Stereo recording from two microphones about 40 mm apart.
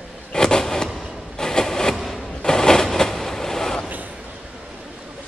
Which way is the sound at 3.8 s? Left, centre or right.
Right.